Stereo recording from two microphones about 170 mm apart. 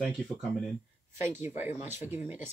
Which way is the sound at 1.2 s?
15° right (ahead or behind).